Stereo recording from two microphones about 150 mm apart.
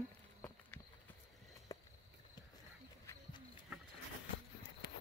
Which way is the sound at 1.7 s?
20° left (ahead or behind).